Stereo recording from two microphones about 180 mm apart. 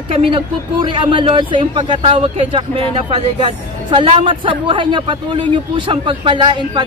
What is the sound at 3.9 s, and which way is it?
Speech, 30° right (ahead or behind).